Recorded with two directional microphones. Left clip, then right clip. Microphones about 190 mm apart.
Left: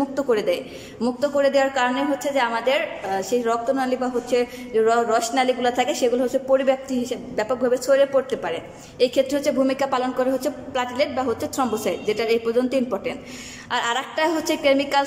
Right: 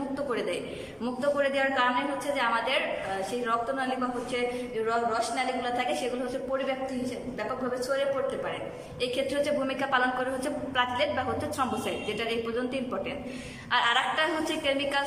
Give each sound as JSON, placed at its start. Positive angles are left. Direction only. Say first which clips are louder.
{"t": 0.1, "sound": "a sound", "louder": "left 7 dB", "side_deg": 35}
{"t": 1.0, "sound": "a woman's voice", "louder": "left 7 dB", "side_deg": 30}
{"t": 9.0, "sound": "a woman's voice", "louder": "left 9 dB", "side_deg": 30}